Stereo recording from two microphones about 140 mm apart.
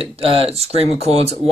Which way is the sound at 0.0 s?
45° right (ahead or behind).